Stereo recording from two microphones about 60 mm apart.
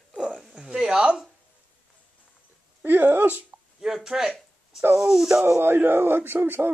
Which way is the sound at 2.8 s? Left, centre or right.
Right.